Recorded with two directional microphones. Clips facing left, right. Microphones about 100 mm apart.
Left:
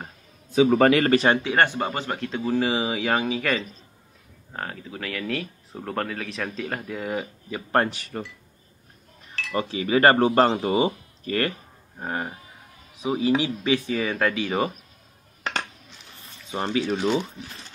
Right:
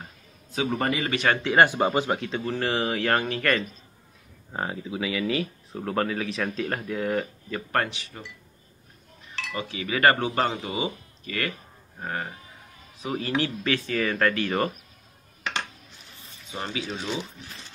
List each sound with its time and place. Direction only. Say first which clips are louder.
0.7 s speech: left 8 dB; 90° left
1.1 s speech: left 5 dB; 30° left (ahead or behind)
1.4 s speech: right 2 dB; 5° right (ahead or behind)
1.8 s speech: right 4 dB; 15° right (ahead or behind)
2.1 s speech: left 4 dB; centre (ahead or behind)
4.5 s speech: right 3 dB; 15° right (ahead or behind); by 7.6 s 5° left (ahead or behind)
7.9 s speech: left 7 dB; 50° left (ahead or behind)
9.5 s speech: left 7 dB; 35° left (ahead or behind)
12.0 s speech: left 2 dB; 20° left (ahead or behind)
16.5 s speech: left 7 dB; 55° left (ahead or behind)